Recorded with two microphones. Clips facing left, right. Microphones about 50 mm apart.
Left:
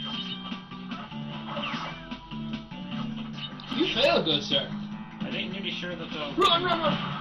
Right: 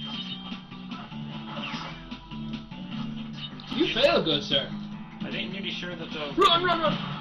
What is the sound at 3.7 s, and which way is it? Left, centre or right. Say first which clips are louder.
Speech: right 1 dB; centre.